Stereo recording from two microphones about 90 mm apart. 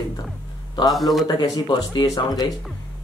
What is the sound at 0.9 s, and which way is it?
Speech, centre (ahead or behind).